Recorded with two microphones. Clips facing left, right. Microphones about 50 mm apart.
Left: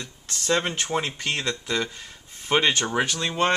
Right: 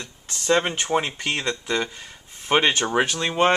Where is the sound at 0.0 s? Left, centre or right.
Centre.